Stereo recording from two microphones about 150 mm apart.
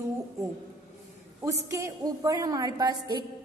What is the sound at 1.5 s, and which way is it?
A woman's voice, 20° right (ahead or behind).